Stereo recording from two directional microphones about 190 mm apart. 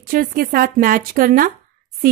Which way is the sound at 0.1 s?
50° right (ahead or behind).